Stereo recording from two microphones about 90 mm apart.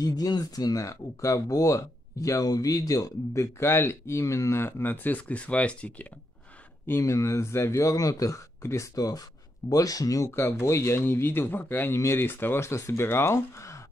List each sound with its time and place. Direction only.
0.0 s speech: 45° left (ahead or behind)
3.5 s speech: 30° left (ahead or behind); by 6.0 s 15° left (ahead or behind)
6.9 s speech: 35° left (ahead or behind)
10.3 s speech: 30° left (ahead or behind)